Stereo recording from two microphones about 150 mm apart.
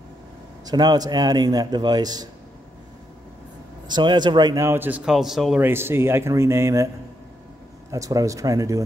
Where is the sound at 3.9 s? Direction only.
30° right (ahead or behind).